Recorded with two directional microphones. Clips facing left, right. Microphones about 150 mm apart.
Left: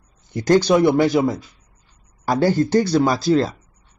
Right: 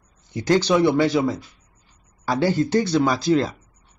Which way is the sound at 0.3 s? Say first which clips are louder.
Left 3 dB; 45° left (ahead or behind).